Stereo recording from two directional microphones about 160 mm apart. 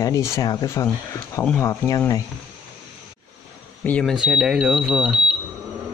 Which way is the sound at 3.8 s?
10° left (ahead or behind).